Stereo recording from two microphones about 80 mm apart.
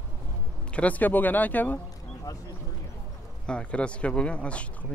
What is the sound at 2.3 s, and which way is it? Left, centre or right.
Speech, left.